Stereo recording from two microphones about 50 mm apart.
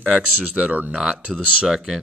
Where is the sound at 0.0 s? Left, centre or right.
Right.